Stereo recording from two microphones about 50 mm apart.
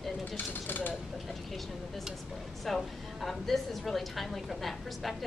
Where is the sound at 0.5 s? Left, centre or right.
Left.